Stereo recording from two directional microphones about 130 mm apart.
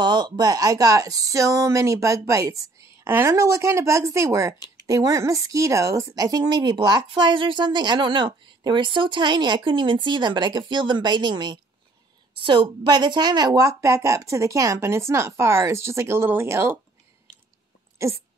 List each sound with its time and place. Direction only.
0.0 s a woman's voice: 35° right (ahead or behind); by 16.7 s 20° right (ahead or behind)
17.9 s dog: 20° right (ahead or behind)